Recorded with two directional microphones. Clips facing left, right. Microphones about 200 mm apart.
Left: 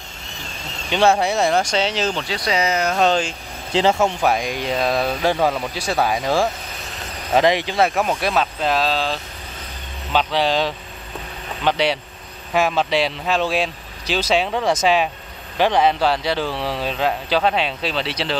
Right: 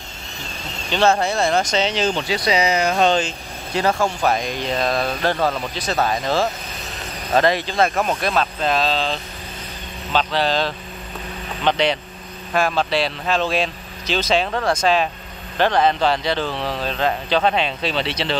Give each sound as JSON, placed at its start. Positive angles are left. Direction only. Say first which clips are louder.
{"t": 1.2, "sound": "speech", "louder": "left 1 dB", "side_deg": 15}
{"t": 3.7, "sound": "speech", "louder": "left 3 dB", "side_deg": 25}
{"t": 4.2, "sound": "speech", "louder": "left 1 dB", "side_deg": 10}